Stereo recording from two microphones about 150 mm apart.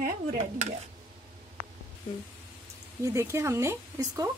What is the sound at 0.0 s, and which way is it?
Speech, 55° right (ahead or behind).